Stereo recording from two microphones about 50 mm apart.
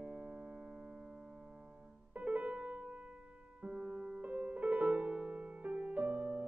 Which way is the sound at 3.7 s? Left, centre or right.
Right.